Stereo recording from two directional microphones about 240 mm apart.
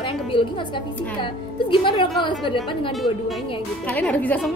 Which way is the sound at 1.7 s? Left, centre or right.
Left.